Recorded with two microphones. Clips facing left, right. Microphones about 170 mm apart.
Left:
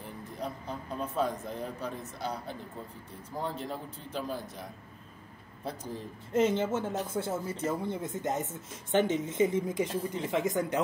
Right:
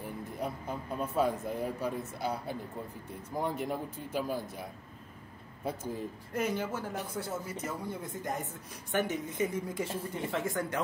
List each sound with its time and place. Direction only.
0.4 s a man's voice: 10° right (ahead or behind)
6.3 s speech: 25° left (ahead or behind)